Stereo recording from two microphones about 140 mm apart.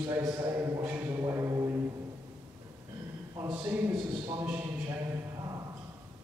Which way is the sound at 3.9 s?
25° right (ahead or behind).